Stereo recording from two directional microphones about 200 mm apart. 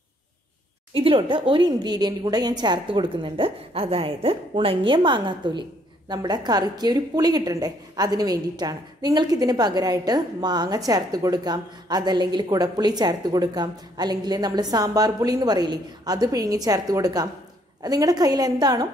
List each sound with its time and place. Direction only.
0.9 s a woman's voice: 25° right (ahead or behind)